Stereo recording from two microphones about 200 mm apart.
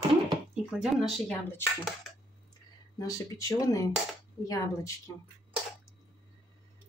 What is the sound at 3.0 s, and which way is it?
Speech, 15° left (ahead or behind).